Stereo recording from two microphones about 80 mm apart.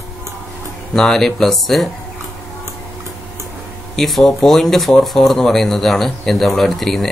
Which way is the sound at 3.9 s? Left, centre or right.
Centre.